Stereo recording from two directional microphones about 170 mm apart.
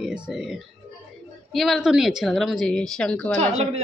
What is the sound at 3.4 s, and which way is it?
Speech, 40° right (ahead or behind).